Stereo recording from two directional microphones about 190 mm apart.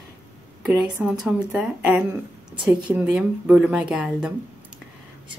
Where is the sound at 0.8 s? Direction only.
5° right (ahead or behind).